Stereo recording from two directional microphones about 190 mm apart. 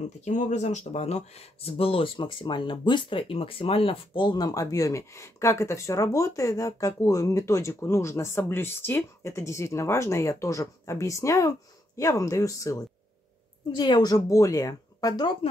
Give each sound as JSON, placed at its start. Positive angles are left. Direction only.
{"t": 0.2, "sound": "speech", "side_deg": 40}